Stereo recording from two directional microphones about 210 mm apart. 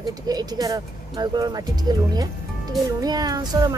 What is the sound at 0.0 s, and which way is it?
A child's voice, 20° right (ahead or behind).